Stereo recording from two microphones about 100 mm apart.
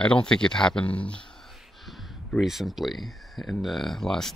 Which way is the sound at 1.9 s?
Centre (ahead or behind).